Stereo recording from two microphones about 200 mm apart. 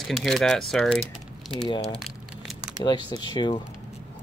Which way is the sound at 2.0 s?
Centre (ahead or behind).